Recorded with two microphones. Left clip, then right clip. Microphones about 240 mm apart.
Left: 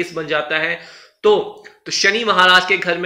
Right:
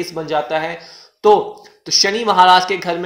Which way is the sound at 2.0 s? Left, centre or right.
Centre.